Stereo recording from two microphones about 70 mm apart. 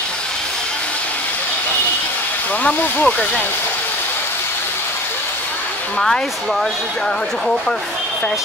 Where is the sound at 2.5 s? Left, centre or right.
Left.